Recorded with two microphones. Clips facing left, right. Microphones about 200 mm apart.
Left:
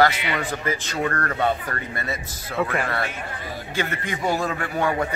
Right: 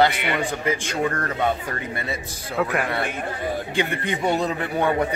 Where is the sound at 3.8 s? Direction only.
20° right (ahead or behind).